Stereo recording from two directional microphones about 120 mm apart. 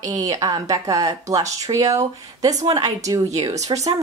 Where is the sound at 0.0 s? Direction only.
30° right (ahead or behind).